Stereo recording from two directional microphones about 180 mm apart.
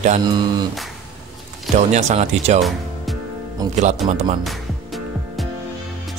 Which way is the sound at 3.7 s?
40° right (ahead or behind).